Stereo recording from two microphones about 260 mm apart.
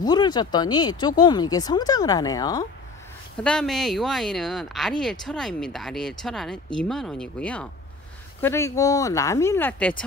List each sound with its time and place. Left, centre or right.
0.0 s speech: centre
3.4 s speech: centre